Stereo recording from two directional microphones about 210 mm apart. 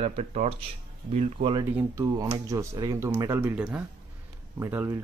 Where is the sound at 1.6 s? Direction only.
10° right (ahead or behind).